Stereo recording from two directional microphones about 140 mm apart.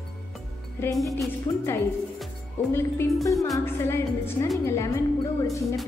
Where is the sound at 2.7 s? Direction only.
15° left (ahead or behind).